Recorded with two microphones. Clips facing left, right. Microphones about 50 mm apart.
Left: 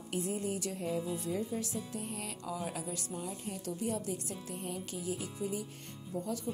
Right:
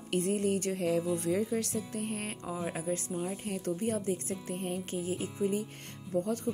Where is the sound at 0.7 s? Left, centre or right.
Right.